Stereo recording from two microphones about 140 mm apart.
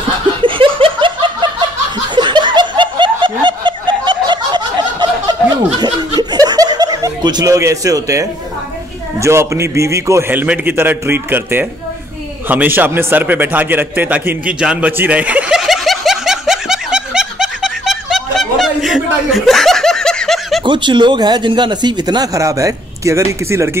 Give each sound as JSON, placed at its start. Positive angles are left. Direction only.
{"t": 0.4, "sound": "laughter", "side_deg": -35}
{"t": 2.1, "sound": "snicker", "side_deg": -35}
{"t": 9.2, "sound": "a man's voice", "side_deg": -20}
{"t": 12.4, "sound": "a sound", "side_deg": -15}
{"t": 20.6, "sound": "speech", "side_deg": -35}